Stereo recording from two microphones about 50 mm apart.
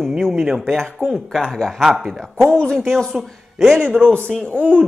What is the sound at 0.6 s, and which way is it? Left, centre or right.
A man's voice, centre.